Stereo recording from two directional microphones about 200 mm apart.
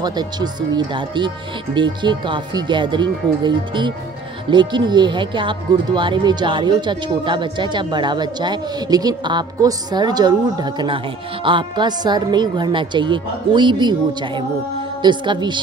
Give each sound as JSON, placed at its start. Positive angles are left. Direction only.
{"t": 0.0, "sound": "speech", "side_deg": -20}